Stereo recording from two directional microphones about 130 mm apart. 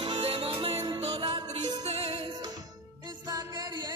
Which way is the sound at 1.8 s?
55° right (ahead or behind).